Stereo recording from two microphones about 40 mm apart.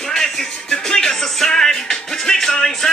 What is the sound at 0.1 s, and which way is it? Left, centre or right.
Music, centre.